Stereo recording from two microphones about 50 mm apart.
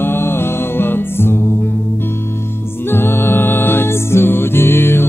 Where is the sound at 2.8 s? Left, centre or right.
Left.